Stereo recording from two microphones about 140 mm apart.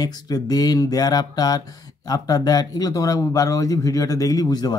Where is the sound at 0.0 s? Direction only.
25° left (ahead or behind).